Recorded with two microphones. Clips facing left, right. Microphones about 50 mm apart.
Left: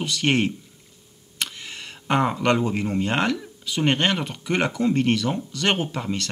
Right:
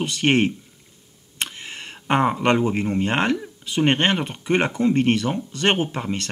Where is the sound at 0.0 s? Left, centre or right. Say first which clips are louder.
Right 3 dB; right.